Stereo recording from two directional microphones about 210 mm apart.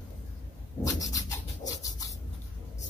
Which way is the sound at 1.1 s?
15° left (ahead or behind).